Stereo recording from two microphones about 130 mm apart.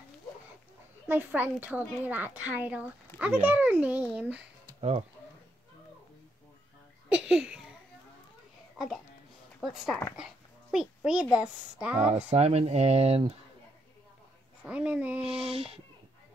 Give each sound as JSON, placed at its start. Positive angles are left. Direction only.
{"t": 1.0, "sound": "a woman's voice", "side_deg": -15}
{"t": 4.7, "sound": "speech", "side_deg": -50}
{"t": 7.1, "sound": "a sound", "side_deg": -5}
{"t": 8.7, "sound": "a child's voice", "side_deg": 0}
{"t": 11.1, "sound": "a woman's voice", "side_deg": -5}
{"t": 12.1, "sound": "speech", "side_deg": -55}
{"t": 14.6, "sound": "a woman's voice", "side_deg": -10}
{"t": 15.3, "sound": "speech", "side_deg": -50}